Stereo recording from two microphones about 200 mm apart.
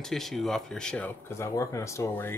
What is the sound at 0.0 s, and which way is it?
Speech, centre (ahead or behind).